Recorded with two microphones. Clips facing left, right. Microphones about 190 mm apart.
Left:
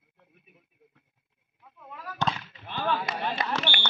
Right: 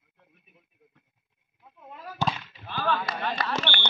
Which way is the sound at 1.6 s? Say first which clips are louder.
Even; 25° right (ahead or behind).